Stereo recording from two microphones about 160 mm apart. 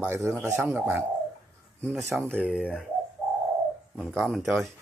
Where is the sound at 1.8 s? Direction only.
5° left (ahead or behind).